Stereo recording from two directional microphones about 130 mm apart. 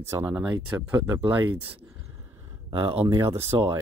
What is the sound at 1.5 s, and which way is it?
Speech, 45° right (ahead or behind).